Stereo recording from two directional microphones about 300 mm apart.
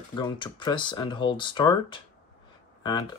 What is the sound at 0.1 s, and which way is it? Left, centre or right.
Speech, centre.